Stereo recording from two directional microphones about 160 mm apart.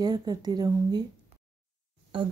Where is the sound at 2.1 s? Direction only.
35° right (ahead or behind).